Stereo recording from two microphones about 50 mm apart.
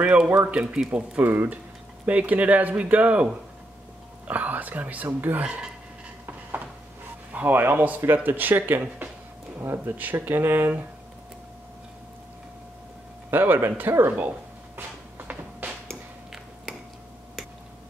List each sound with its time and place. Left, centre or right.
0.0 s speech: right
1.1 s speech: right
4.3 s speech: right
7.3 s speech: right
8.0 s speech: right
9.6 s speech: right
13.3 s speech: right
14.8 s music: right